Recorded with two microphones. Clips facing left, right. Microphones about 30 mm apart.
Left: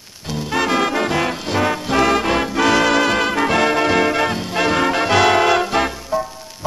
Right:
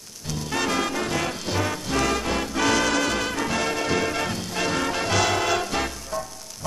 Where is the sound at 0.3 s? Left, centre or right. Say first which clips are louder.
Left 7 dB; left.